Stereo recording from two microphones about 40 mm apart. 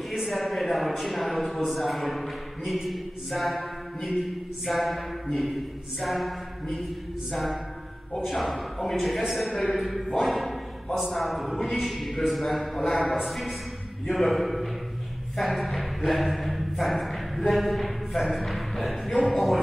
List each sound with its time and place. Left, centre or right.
0.1 s a man's voice: centre
8.2 s a man's voice: centre